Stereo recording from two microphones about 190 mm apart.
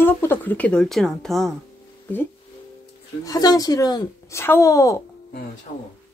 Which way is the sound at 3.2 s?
20° left (ahead or behind).